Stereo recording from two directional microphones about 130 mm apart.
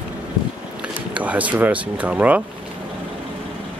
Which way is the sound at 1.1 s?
10° right (ahead or behind).